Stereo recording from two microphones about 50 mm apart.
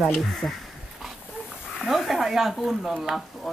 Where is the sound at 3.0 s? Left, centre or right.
Centre.